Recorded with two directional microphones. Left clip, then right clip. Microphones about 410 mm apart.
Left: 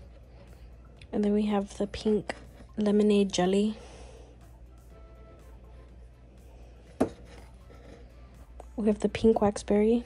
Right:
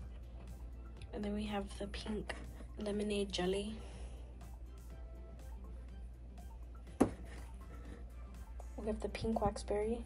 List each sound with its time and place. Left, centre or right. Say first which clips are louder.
0.9 s speech: left 15 dB; centre
8.8 s speech: left 16 dB; centre